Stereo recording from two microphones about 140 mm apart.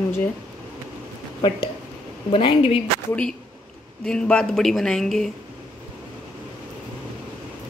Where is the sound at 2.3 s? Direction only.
40° left (ahead or behind).